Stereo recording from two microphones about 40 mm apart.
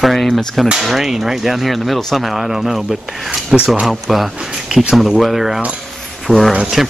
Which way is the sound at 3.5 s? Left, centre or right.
Centre.